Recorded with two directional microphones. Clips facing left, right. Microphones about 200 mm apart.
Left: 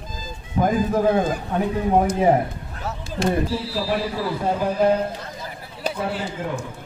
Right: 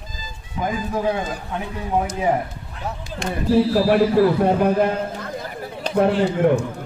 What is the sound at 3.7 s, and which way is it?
A man's voice, 55° right (ahead or behind).